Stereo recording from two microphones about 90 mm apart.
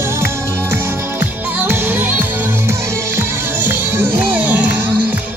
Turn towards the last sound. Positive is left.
turn(degrees=-20)  # may be behind; listen again after turning